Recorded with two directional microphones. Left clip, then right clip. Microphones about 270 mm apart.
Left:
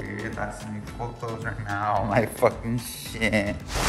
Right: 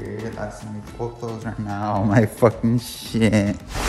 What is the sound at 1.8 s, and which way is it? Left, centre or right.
Speech, right.